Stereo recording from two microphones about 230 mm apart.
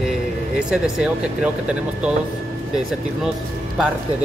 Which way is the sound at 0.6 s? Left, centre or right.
Centre.